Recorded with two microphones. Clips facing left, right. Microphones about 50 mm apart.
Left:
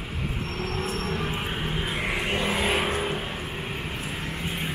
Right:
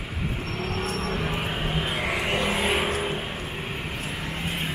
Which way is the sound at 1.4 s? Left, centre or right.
Centre.